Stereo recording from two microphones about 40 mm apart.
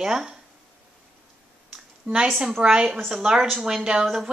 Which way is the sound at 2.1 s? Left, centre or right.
Right.